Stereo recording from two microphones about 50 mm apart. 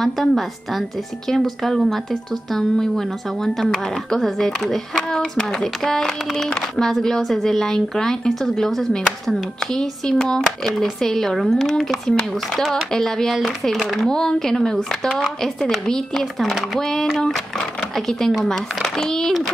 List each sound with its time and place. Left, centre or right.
0.0 s a woman's voice: centre